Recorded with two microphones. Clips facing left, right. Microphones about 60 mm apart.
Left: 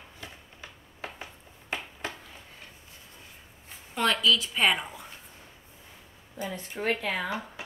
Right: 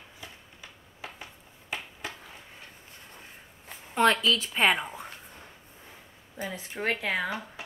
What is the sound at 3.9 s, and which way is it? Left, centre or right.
A woman's voice, right.